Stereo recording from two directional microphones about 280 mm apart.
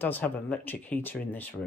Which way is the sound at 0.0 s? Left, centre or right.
Centre.